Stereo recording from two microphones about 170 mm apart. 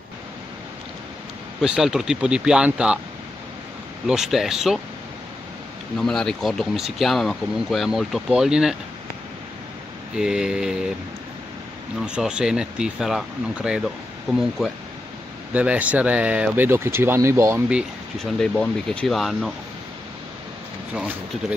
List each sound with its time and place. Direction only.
1.6 s speech: 5° right (ahead or behind)
4.1 s speech: centre (ahead or behind)
5.9 s speech: 5° left (ahead or behind)
10.1 s speech: 5° right (ahead or behind)
12.1 s speech: 5° right (ahead or behind)
15.5 s speech: 10° right (ahead or behind)
17.7 s speech: 5° left (ahead or behind)
20.9 s speech: 10° right (ahead or behind)